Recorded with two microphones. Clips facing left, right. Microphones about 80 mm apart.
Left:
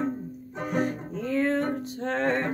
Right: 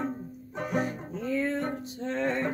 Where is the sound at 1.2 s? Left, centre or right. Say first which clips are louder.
Left 4 dB; left.